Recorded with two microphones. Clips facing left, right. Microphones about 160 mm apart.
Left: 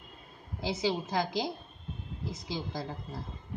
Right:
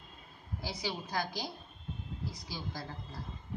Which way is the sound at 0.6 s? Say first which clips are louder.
Left 8 dB; 20° left (ahead or behind).